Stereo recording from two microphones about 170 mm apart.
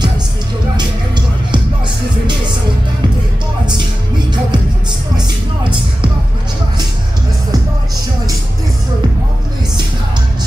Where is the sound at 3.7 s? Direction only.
25° right (ahead or behind).